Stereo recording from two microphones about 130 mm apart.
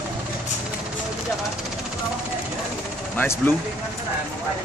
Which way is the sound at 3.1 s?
15° left (ahead or behind).